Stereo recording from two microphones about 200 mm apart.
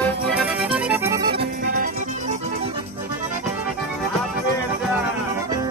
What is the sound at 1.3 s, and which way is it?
Music, 50° right (ahead or behind).